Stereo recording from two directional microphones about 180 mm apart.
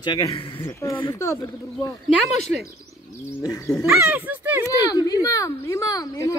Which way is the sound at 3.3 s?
20° left (ahead or behind).